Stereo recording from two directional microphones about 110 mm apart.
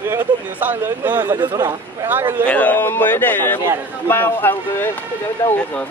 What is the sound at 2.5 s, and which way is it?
Speech, 15° left (ahead or behind).